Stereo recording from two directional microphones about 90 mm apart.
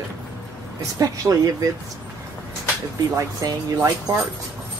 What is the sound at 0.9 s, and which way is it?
Speech, 40° right (ahead or behind).